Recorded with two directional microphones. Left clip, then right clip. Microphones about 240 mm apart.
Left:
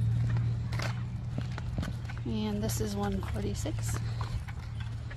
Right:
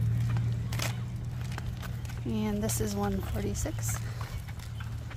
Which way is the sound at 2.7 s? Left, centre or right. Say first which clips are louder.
Right 2 dB; centre.